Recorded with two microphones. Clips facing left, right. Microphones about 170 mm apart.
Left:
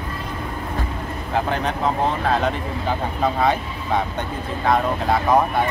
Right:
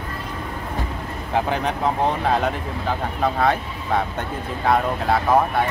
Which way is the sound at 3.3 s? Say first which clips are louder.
Even; centre (ahead or behind).